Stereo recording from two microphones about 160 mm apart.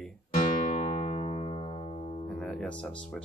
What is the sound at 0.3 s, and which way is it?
Music, 40° left (ahead or behind).